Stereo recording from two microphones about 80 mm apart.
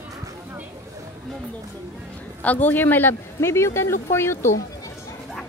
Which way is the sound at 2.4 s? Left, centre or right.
Left.